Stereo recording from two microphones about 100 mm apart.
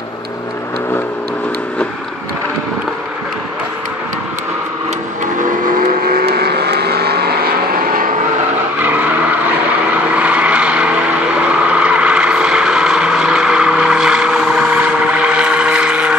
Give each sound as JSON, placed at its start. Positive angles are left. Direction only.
{"t": 8.8, "sound": "vehicle", "side_deg": -15}
{"t": 10.1, "sound": "vehicle", "side_deg": -15}